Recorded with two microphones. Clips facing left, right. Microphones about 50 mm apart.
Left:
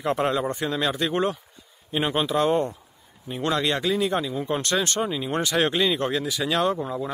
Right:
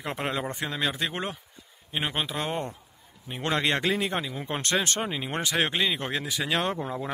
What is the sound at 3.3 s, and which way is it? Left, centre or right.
Speech, right.